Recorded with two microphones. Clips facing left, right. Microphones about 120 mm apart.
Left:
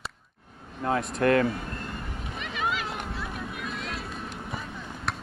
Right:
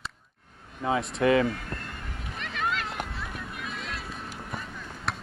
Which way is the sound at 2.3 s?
5° left (ahead or behind).